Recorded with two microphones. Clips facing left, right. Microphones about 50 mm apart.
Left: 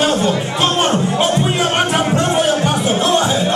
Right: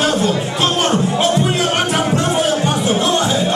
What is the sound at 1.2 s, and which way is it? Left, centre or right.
Music, centre.